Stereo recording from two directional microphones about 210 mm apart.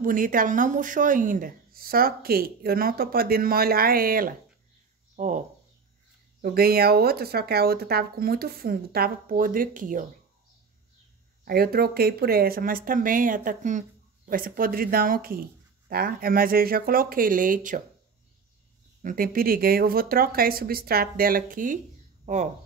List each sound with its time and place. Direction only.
0.0 s speech: 40° right (ahead or behind)
6.4 s speech: 45° right (ahead or behind)
11.4 s speech: 45° right (ahead or behind)
19.0 s speech: 45° right (ahead or behind)